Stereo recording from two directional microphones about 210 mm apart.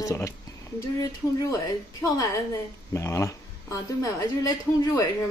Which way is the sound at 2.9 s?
15° left (ahead or behind).